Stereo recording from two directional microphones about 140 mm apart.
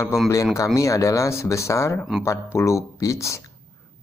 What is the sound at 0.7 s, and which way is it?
Speech, 20° left (ahead or behind).